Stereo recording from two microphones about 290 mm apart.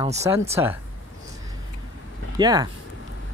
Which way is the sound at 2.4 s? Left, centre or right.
Centre.